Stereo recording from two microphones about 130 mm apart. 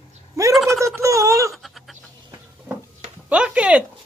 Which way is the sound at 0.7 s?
20° right (ahead or behind).